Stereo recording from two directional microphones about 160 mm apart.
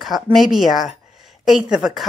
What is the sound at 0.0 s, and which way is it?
A woman's voice, centre (ahead or behind).